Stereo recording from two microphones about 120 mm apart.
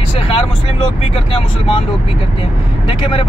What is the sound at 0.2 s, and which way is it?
Speech, 50° left (ahead or behind).